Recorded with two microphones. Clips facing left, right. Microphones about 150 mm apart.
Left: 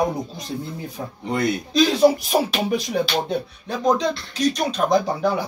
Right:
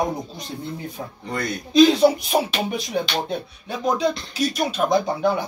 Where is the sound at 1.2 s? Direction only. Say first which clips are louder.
Left 6 dB; 20° left (ahead or behind).